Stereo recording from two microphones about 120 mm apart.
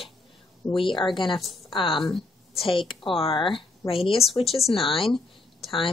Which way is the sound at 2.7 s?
45° left (ahead or behind).